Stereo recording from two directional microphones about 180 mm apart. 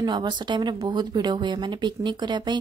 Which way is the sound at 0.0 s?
25° right (ahead or behind).